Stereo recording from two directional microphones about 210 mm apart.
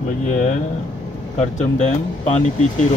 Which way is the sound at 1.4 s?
35° left (ahead or behind).